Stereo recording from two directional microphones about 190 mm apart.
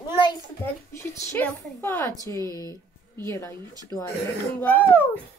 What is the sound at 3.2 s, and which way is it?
A woman's voice, 15° left (ahead or behind).